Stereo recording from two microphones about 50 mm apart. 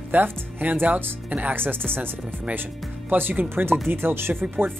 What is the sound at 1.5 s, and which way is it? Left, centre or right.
Speech, right.